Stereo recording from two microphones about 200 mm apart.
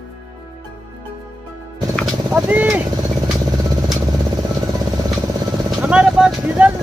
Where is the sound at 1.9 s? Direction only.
5° right (ahead or behind).